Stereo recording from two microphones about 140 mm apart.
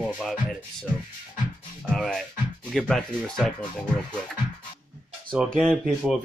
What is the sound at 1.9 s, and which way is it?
Speech, 5° left (ahead or behind).